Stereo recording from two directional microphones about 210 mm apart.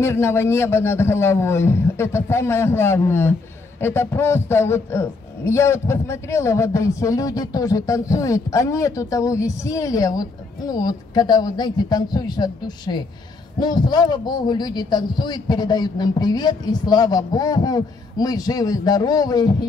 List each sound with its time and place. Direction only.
0.0 s a man's voice: 10° left (ahead or behind)